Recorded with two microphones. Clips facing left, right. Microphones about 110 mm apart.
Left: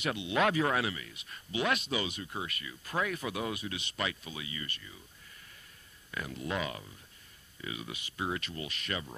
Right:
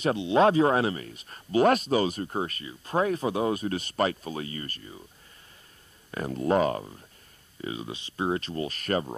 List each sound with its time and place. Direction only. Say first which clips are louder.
0.0 s speech: right 8 dB; 35° right (ahead or behind)
6.1 s speech: right 11 dB; 40° right (ahead or behind)
7.6 s speech: right 7 dB; 30° right (ahead or behind)